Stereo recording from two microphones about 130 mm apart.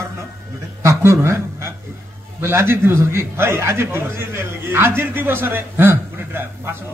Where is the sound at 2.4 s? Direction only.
20° right (ahead or behind).